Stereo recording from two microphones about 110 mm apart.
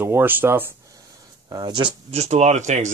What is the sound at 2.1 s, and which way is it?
Speech, 85° right.